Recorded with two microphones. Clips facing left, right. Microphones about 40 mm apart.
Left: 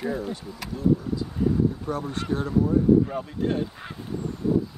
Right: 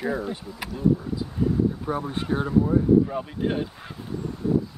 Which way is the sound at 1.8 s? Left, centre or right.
Centre.